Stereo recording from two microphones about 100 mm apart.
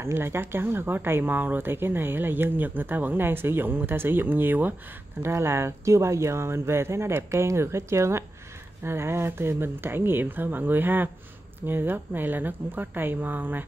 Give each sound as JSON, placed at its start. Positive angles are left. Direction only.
{"t": 0.0, "sound": "speech", "side_deg": -25}